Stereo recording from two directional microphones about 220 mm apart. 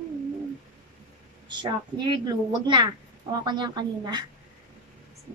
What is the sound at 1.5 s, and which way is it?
A woman's voice, 20° right (ahead or behind).